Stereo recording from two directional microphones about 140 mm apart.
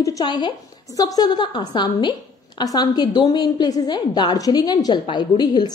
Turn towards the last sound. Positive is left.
turn(degrees=30)  # may be behind; listen again after turning